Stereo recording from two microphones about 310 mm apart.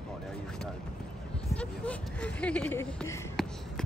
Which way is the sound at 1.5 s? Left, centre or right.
Centre.